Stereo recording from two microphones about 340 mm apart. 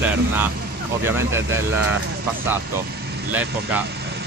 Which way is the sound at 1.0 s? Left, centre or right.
Centre.